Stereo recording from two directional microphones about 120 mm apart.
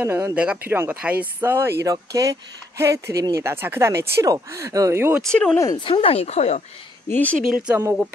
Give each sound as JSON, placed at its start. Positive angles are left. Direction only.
{"t": 0.0, "sound": "speech", "side_deg": -20}
{"t": 5.2, "sound": "speech", "side_deg": 5}
{"t": 5.8, "sound": "speech", "side_deg": 50}
{"t": 7.1, "sound": "speech", "side_deg": 15}
{"t": 7.4, "sound": "speech", "side_deg": -10}